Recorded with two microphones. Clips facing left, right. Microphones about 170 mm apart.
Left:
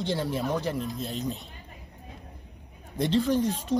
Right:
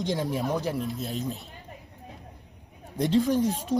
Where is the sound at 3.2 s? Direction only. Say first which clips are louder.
Right 1 dB; 10° right (ahead or behind).